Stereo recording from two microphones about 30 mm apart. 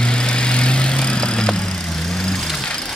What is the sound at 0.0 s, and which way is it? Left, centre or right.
Vehicle, left.